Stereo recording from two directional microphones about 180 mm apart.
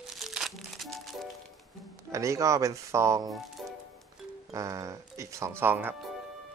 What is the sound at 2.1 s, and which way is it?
Speech, 15° right (ahead or behind).